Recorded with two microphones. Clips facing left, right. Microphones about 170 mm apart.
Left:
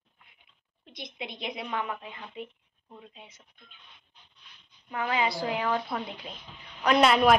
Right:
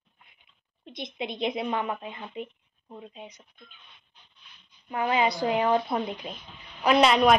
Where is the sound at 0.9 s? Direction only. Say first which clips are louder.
Right 6 dB; 20° right (ahead or behind).